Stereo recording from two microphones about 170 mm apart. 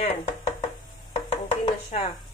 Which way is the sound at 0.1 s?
35° left (ahead or behind).